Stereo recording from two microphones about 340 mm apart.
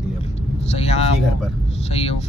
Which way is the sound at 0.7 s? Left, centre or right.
Centre.